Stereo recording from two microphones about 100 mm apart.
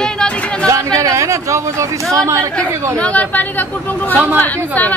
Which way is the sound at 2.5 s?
10° left (ahead or behind).